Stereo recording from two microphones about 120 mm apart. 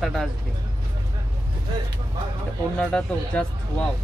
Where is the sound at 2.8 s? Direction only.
10° left (ahead or behind).